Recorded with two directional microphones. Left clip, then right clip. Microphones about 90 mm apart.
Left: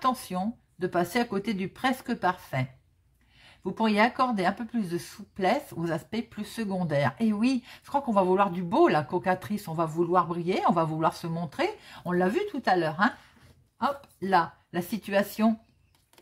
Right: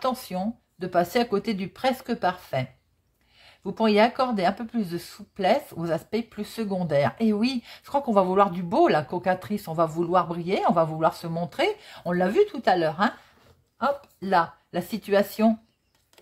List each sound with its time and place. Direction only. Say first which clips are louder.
0.0 s speech: even; 20° right (ahead or behind)
10.4 s speech: right 3 dB; 15° right (ahead or behind)
11.3 s speech: right 5 dB; 25° right (ahead or behind)
13.7 s speech: right 3 dB; 10° right (ahead or behind)